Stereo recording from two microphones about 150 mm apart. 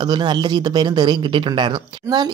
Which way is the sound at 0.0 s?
30° right (ahead or behind).